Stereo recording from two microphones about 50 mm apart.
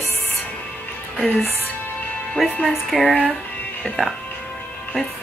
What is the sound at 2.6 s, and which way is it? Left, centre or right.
Speech, centre.